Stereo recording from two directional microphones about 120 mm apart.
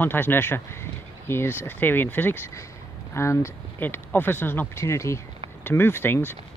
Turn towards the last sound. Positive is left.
turn(degrees=20)  # may be behind; listen again after turning